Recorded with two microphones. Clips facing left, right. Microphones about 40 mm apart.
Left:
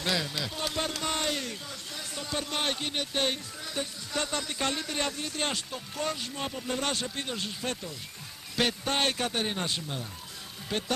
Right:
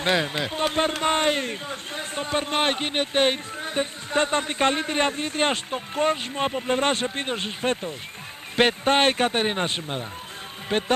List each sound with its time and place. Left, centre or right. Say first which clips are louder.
0.0 s a man's voice: right 7 dB; right